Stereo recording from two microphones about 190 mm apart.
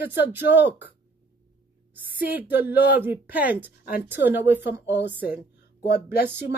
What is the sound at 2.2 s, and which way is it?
Speech, 10° right (ahead or behind).